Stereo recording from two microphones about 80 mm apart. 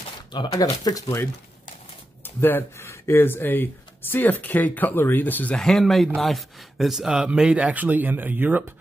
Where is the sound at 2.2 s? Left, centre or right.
Left.